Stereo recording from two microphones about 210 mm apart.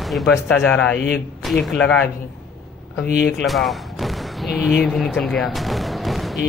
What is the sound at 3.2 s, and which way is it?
Speech, 50° left (ahead or behind).